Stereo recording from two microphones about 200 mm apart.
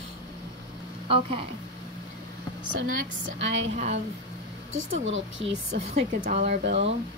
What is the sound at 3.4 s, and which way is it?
Speech, 70° right (ahead or behind).